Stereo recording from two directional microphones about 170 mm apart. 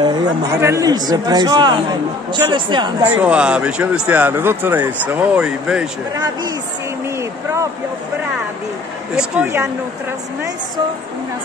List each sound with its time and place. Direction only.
0.0 s speech: 20° right (ahead or behind)
3.2 s speech: 5° right (ahead or behind)
6.1 s speech: 25° right (ahead or behind)
9.1 s speech: 10° right (ahead or behind)